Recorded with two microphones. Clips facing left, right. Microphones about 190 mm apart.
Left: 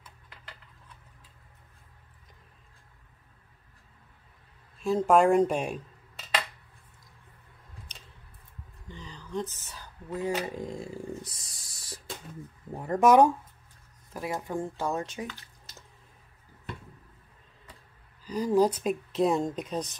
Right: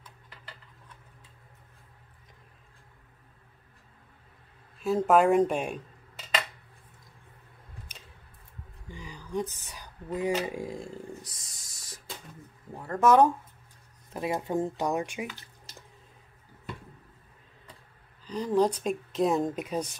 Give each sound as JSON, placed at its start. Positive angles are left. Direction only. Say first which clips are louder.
{"t": 4.7, "sound": "speech", "louder": "even", "side_deg": 0}
{"t": 8.8, "sound": "a sound", "louder": "right 1 dB", "side_deg": -10}
{"t": 11.2, "sound": "speech", "louder": "left 2 dB", "side_deg": 30}
{"t": 12.7, "sound": "speech", "louder": "left 1 dB", "side_deg": 15}
{"t": 14.1, "sound": "speech", "louder": "right 3 dB", "side_deg": -20}
{"t": 18.2, "sound": "speech", "louder": "left 1 dB", "side_deg": 10}